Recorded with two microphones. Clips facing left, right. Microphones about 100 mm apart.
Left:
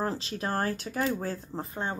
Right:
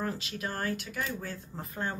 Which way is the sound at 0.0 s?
35° left (ahead or behind).